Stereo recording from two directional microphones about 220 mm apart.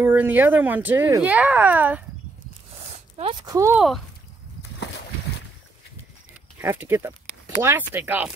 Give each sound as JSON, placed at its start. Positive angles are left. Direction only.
{"t": 0.0, "sound": "speech", "side_deg": -10}
{"t": 3.2, "sound": "speech", "side_deg": -25}
{"t": 3.5, "sound": "speech", "side_deg": -10}
{"t": 4.8, "sound": "a sound", "side_deg": 50}
{"t": 6.6, "sound": "speech", "side_deg": -10}